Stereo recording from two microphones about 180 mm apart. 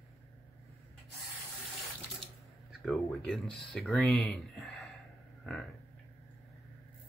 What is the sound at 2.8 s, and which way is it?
Speech, centre (ahead or behind).